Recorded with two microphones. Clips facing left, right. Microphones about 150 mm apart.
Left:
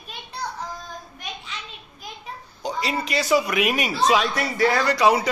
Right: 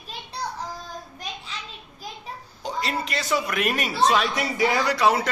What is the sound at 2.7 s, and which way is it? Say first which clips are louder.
A woman's voice: left 2 dB; 5° left (ahead or behind).